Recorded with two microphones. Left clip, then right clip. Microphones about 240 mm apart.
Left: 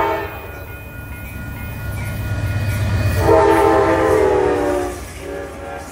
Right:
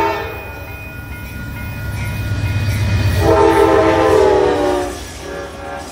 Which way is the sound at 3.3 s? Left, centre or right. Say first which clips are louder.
Right 1 dB; left.